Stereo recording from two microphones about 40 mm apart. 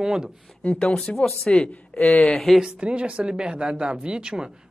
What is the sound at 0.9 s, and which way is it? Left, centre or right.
Speech, centre.